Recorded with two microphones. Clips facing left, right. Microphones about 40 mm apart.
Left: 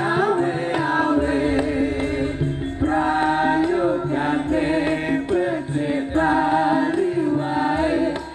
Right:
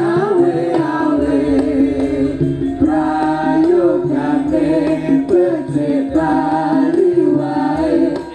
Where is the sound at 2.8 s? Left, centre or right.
Left.